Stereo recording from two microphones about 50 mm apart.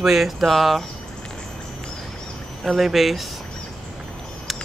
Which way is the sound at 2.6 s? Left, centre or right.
Centre.